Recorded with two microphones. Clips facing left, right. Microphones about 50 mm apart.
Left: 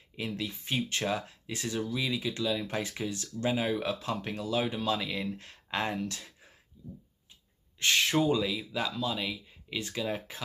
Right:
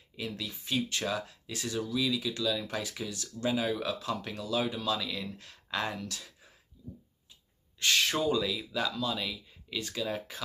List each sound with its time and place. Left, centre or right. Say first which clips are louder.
0.1 s speech: left 3 dB; left
6.7 s a sound: even; left
7.8 s speech: left 2 dB; left